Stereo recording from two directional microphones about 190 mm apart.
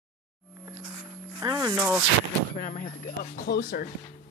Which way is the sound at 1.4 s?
20° right (ahead or behind).